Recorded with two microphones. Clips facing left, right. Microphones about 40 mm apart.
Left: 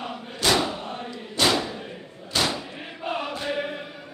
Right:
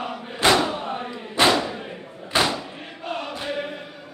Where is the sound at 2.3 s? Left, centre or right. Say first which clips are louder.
Right 4 dB; right.